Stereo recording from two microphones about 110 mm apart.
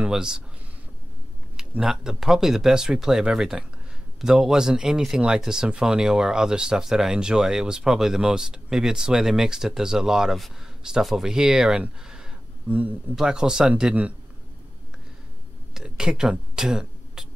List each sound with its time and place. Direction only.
0.0 s speech: 5° right (ahead or behind)
1.6 s speech: 5° right (ahead or behind)
15.7 s a sound: 5° right (ahead or behind)